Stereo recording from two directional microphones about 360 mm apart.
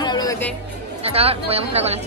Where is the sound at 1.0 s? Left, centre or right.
Centre.